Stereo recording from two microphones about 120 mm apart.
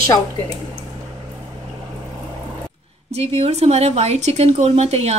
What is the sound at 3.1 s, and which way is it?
Speech, 60° right (ahead or behind).